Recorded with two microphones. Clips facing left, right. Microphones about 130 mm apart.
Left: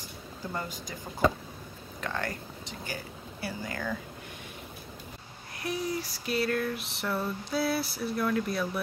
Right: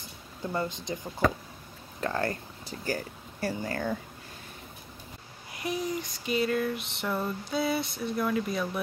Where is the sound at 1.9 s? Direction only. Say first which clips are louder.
Right 4 dB; 35° right (ahead or behind).